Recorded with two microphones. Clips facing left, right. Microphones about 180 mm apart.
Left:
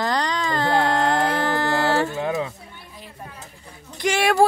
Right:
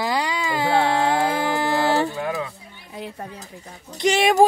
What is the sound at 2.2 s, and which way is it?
Speech, 20° left (ahead or behind).